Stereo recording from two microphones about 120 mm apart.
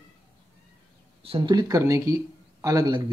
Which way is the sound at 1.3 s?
40° right (ahead or behind).